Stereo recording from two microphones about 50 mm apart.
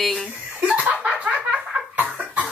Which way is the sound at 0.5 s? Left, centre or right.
Right.